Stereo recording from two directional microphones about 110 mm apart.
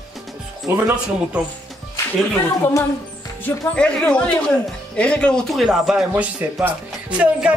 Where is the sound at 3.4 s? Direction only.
10° left (ahead or behind); by 7.5 s 10° right (ahead or behind).